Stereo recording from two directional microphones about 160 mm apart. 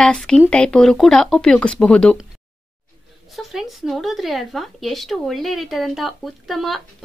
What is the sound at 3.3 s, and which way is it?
Speech, centre (ahead or behind).